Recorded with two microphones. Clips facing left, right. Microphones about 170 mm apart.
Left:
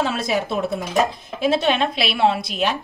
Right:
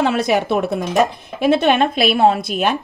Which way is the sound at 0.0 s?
65° right (ahead or behind).